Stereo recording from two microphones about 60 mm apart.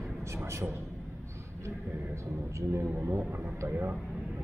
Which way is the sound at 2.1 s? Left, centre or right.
Right.